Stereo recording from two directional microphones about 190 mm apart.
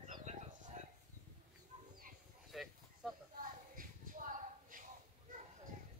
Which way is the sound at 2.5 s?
Centre (ahead or behind).